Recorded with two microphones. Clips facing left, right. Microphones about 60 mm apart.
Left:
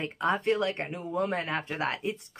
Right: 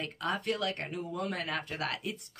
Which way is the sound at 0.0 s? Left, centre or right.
Left.